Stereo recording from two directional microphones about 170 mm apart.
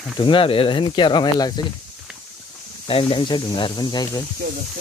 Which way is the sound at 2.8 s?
30° left (ahead or behind).